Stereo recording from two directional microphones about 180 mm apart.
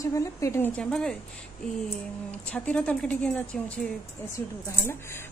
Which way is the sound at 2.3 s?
5° left (ahead or behind).